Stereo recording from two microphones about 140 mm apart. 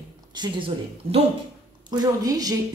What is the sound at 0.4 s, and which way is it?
Speech, 30° right (ahead or behind).